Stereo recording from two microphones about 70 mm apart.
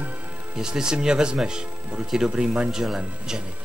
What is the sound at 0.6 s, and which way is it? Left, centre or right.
Speech, centre.